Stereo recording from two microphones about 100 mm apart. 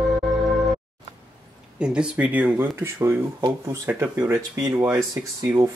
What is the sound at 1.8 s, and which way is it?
Speech, 10° right (ahead or behind).